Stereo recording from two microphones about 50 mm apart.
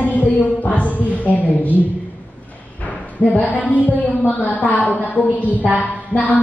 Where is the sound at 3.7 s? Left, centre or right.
Left.